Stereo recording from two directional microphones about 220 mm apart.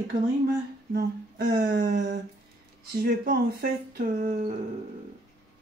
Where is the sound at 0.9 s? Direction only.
45° right (ahead or behind).